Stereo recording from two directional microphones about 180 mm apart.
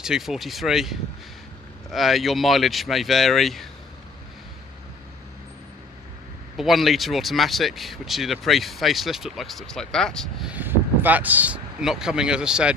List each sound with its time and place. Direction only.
0.0 s speech: 5° right (ahead or behind)
6.5 s speech: centre (ahead or behind)
10.5 s speech: 10° right (ahead or behind)